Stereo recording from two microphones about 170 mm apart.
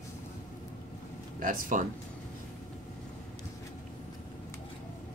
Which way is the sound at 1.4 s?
50° right (ahead or behind).